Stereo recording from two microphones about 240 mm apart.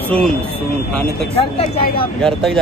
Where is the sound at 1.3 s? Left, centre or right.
Left.